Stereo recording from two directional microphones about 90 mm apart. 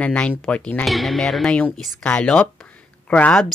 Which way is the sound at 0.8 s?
Centre (ahead or behind).